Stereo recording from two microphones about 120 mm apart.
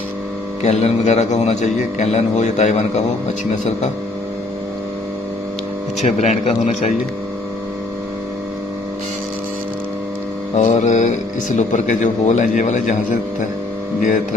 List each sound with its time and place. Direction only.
0.6 s a man's voice: 65° left (ahead or behind)
6.0 s a man's voice: 75° left (ahead or behind)
10.5 s speech: 75° left (ahead or behind)